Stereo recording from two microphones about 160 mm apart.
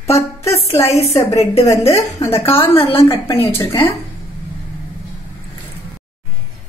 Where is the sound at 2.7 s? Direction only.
35° left (ahead or behind).